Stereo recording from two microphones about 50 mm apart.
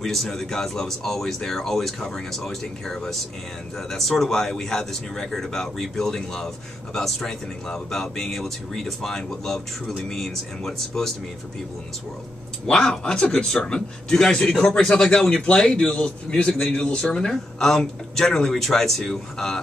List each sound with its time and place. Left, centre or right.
0.0 s speech: centre
12.6 s speech: centre